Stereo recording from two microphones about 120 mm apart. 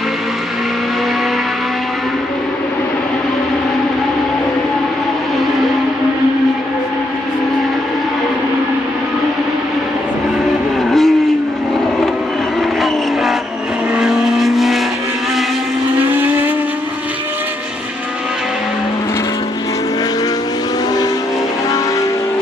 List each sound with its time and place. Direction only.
10.9 s vehicle: centre (ahead or behind)
13.9 s vehicle: 5° right (ahead or behind)
16.1 s vehicle: 15° right (ahead or behind)